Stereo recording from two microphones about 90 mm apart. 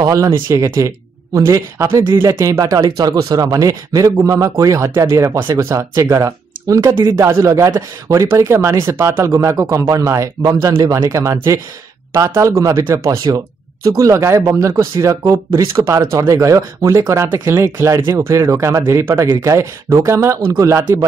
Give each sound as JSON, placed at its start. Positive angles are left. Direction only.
{"t": 0.0, "sound": "speech", "side_deg": -40}
{"t": 17.3, "sound": "speech", "side_deg": -25}